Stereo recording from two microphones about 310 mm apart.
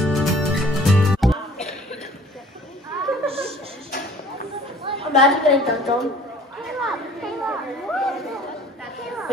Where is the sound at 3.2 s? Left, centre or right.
Centre.